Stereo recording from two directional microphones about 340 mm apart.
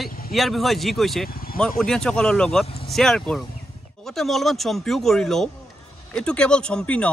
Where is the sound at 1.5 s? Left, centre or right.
Centre.